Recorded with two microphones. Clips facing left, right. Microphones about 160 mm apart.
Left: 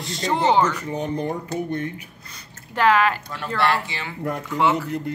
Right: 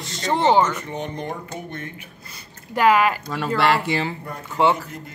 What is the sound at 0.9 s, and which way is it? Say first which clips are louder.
Speech: left 4 dB; 35° left (ahead or behind).